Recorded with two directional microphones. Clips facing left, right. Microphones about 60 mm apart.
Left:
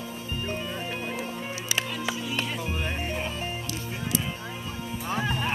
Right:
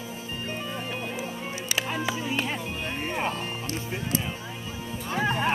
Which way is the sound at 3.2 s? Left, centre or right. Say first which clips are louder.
Right 3 dB; right.